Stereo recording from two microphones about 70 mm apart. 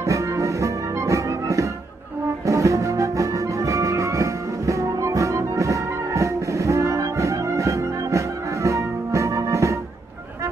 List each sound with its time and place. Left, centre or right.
0.0 s music: right